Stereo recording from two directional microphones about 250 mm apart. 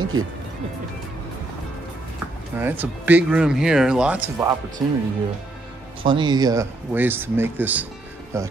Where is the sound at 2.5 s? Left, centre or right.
Centre.